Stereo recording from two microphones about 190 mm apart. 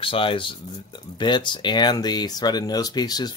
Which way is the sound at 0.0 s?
30° left (ahead or behind).